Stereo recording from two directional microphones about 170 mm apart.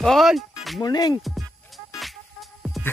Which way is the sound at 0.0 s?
Centre (ahead or behind).